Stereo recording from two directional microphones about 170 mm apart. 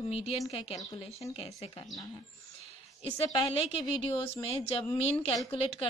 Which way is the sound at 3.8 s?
30° left (ahead or behind).